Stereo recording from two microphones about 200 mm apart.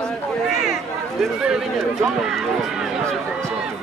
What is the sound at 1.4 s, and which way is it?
Speech, 5° right (ahead or behind).